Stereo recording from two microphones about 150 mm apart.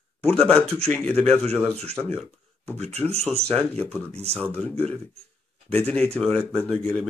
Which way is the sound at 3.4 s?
5° left (ahead or behind).